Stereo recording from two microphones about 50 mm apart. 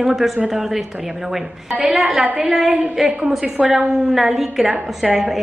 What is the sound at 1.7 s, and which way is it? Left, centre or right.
A woman's voice, centre.